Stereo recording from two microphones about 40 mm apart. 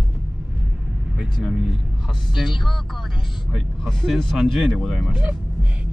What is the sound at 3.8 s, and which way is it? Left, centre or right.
Speech, centre.